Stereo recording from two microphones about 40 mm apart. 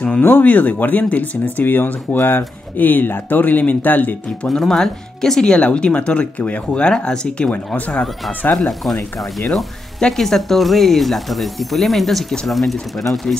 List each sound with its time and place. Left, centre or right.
0.2 s speech: left
1.7 s speech: left
4.6 s speech: centre
5.4 s speech: left
7.5 s speech: left
9.9 s speech: centre